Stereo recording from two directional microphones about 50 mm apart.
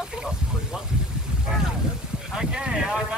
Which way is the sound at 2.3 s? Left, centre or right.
Centre.